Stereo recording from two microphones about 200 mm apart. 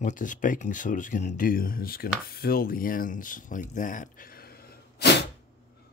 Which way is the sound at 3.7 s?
40° left (ahead or behind).